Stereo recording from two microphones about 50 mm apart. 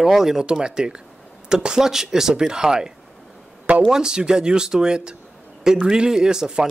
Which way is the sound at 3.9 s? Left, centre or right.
Centre.